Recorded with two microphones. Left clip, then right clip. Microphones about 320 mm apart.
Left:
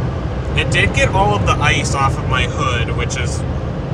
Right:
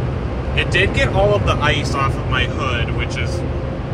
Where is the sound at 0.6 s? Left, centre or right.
Centre.